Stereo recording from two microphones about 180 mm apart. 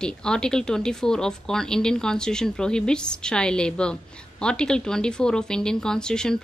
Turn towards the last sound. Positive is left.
turn(degrees=5)  # may be behind; listen again after turning